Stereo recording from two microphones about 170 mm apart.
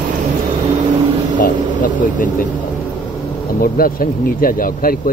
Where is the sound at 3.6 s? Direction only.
60° left (ahead or behind).